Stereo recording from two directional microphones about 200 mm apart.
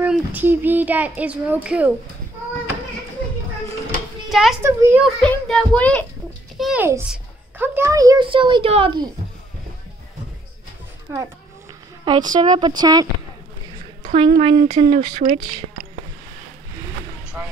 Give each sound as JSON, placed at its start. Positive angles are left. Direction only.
{"t": 0.0, "sound": "a child's voice", "side_deg": -10}
{"t": 4.3, "sound": "a child's voice", "side_deg": 0}
{"t": 4.6, "sound": "a child's voice", "side_deg": -10}
{"t": 5.0, "sound": "a child's voice", "side_deg": 5}
{"t": 6.6, "sound": "a child's voice", "side_deg": -10}
{"t": 11.1, "sound": "a child's voice", "side_deg": -15}
{"t": 12.4, "sound": "a woman's voice", "side_deg": -25}
{"t": 14.1, "sound": "a woman's voice", "side_deg": -30}